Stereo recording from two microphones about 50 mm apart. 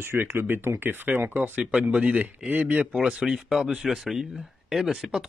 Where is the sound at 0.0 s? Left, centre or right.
Right.